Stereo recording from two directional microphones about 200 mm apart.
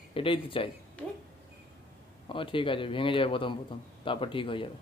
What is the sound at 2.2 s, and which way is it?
Speech, 25° left (ahead or behind).